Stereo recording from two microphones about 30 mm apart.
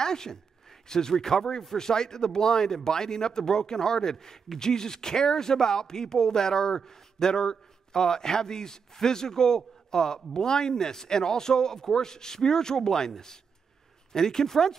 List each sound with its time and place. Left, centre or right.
0.0 s speech: centre